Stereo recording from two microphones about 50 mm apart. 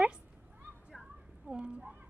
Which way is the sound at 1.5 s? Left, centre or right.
Right.